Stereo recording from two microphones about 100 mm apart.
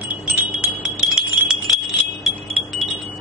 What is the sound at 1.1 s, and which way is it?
Wind chime, 5° right (ahead or behind).